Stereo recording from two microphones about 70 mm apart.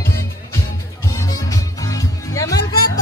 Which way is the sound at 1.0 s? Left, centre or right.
Left.